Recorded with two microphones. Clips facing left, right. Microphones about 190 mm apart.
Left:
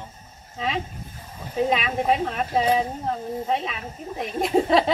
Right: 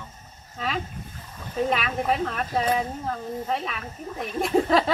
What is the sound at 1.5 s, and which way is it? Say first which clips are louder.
Speech: left 2 dB; 15° left (ahead or behind).